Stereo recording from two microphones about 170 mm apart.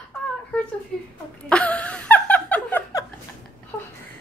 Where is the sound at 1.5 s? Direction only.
5° left (ahead or behind).